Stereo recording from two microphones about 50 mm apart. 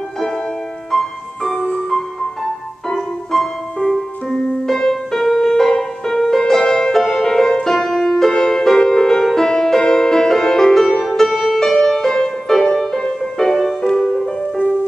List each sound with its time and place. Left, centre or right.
0.9 s music: centre